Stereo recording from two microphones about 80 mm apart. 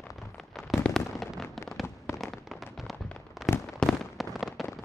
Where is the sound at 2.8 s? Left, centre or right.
Centre.